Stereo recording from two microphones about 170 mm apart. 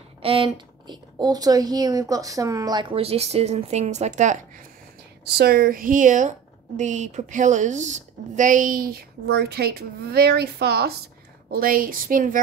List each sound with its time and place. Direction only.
0.2 s speech: 30° right (ahead or behind)
5.2 s a woman's voice: 65° right (ahead or behind)
11.5 s a woman's voice: 55° right (ahead or behind)